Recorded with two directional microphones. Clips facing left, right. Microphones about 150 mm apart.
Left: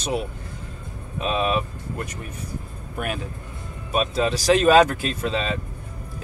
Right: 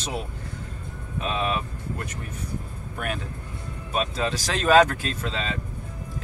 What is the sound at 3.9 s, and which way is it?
Speech, 15° left (ahead or behind).